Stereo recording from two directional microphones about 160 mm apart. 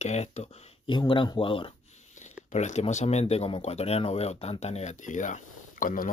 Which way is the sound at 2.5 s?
45° left (ahead or behind).